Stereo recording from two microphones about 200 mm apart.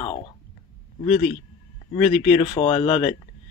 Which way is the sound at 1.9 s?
30° left (ahead or behind).